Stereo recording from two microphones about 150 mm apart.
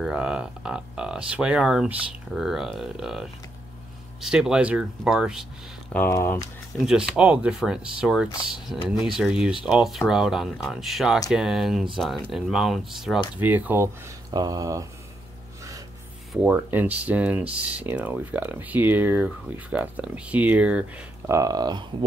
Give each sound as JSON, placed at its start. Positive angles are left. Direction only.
{"t": 0.0, "sound": "speech", "side_deg": -5}
{"t": 5.9, "sound": "speech", "side_deg": 15}
{"t": 6.9, "sound": "speech", "side_deg": -5}
{"t": 14.3, "sound": "speech", "side_deg": -25}
{"t": 16.4, "sound": "speech", "side_deg": -10}
{"t": 21.3, "sound": "speech", "side_deg": -25}